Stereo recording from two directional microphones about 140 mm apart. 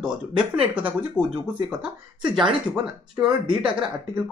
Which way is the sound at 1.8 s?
5° right (ahead or behind).